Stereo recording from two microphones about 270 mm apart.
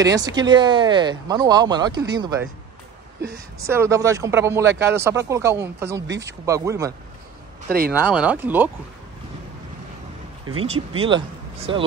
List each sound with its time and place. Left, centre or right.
0.0 s speech: centre
3.6 s speech: centre
7.6 s speech: right
7.9 s speech: centre
10.6 s speech: right